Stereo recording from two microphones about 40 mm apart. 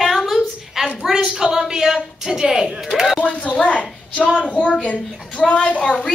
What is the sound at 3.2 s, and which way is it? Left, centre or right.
A woman's voice, left.